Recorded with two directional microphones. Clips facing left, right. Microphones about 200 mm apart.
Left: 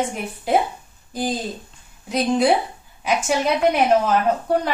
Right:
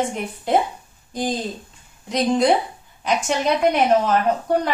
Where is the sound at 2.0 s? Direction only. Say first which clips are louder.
Even; 5° left (ahead or behind).